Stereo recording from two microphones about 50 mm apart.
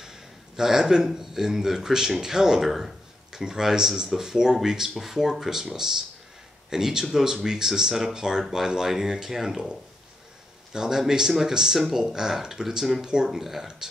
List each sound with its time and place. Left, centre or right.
0.0 s speech: centre